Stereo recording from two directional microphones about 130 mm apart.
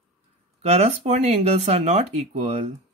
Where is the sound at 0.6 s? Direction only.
55° right (ahead or behind).